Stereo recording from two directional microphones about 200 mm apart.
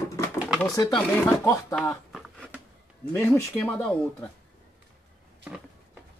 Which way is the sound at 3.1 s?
15° left (ahead or behind).